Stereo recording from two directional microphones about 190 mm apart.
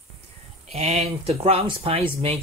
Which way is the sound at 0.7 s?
35° right (ahead or behind).